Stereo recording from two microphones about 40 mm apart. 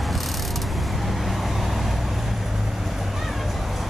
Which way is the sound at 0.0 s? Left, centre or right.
Centre.